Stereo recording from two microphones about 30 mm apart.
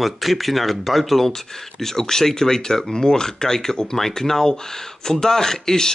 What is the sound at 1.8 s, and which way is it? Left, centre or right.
Speech, centre.